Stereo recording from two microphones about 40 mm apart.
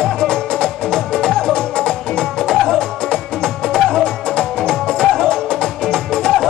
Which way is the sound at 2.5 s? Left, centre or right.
Centre.